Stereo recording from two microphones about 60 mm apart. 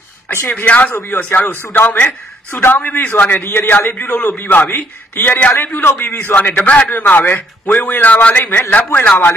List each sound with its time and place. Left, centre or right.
0.7 s a man's voice: left
6.5 s a man's voice: left